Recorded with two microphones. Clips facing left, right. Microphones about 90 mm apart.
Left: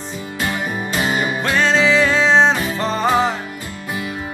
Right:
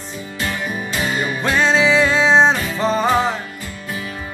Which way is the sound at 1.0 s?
15° left (ahead or behind).